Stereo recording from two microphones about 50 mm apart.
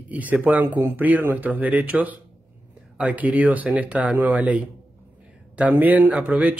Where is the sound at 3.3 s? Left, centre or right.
Right.